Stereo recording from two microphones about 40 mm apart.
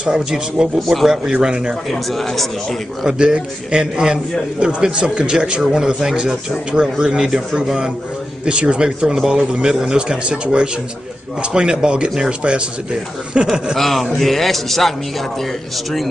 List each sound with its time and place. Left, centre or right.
0.0 s a man's voice: right
0.7 s a man's voice: centre
1.0 s a man's voice: centre
1.9 s a man's voice: centre
3.1 s a man's voice: right
13.7 s a man's voice: centre